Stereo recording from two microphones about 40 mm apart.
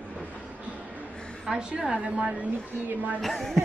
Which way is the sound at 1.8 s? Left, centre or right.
Right.